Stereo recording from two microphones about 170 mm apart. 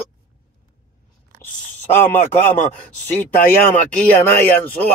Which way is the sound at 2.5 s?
45° left (ahead or behind).